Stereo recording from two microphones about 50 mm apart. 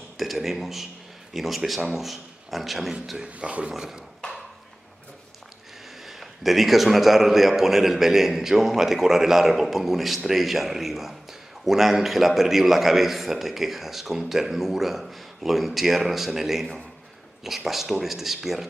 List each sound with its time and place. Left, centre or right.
0.2 s a man's voice: centre
3.3 s speech: right
6.0 s a man's voice: centre